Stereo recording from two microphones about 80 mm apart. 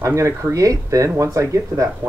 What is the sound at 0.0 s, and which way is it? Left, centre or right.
Speech, right.